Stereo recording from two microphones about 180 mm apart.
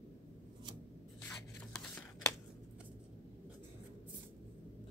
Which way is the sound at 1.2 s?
10° left (ahead or behind).